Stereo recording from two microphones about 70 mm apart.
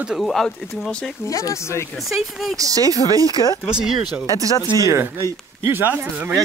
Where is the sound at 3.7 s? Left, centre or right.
Centre.